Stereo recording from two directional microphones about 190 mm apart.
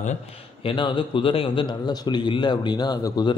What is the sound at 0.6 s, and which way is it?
A man's voice, 25° left (ahead or behind).